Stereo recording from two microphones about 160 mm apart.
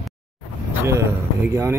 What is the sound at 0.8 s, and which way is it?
Speech, 15° right (ahead or behind).